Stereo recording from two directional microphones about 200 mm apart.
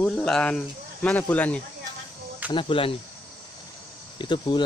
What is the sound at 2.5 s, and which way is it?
Speech, 25° left (ahead or behind).